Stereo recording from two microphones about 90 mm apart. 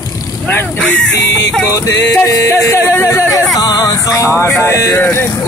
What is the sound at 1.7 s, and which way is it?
Music, 40° left (ahead or behind).